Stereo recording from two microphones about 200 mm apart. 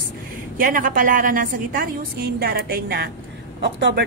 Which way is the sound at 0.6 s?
45° right (ahead or behind).